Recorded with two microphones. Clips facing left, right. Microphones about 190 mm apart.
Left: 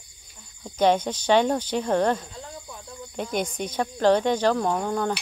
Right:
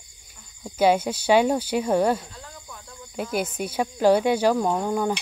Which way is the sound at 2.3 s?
20° left (ahead or behind).